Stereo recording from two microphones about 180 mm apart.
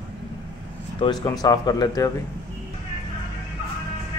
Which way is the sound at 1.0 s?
20° left (ahead or behind).